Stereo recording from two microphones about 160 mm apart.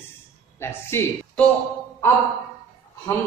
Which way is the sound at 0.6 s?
15° left (ahead or behind).